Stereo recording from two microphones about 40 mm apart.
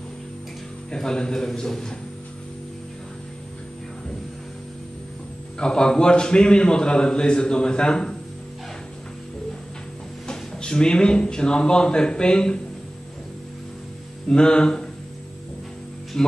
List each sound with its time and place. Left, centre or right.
0.9 s a man's voice: centre
5.6 s a man's voice: left
10.2 s speech: centre
14.3 s a man's voice: left
16.1 s speech: centre